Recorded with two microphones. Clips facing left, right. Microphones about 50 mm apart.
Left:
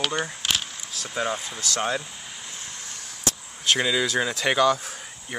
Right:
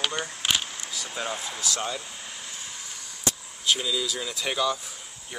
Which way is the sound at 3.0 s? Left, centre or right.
Left.